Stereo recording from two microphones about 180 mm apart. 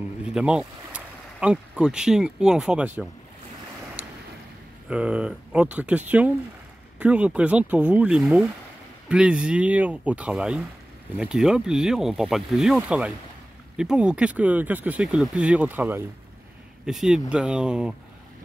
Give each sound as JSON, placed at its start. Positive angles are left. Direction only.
{"t": 0.3, "sound": "speech", "side_deg": -5}
{"t": 4.8, "sound": "speech", "side_deg": -5}